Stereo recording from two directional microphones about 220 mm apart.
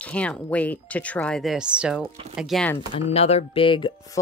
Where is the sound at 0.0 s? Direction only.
5° left (ahead or behind).